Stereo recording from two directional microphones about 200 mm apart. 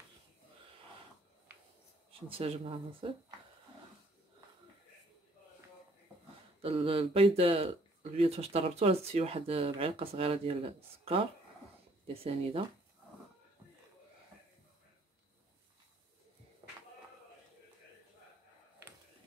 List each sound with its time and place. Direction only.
2.1 s speech: 30° right (ahead or behind)
6.6 s speech: 30° right (ahead or behind)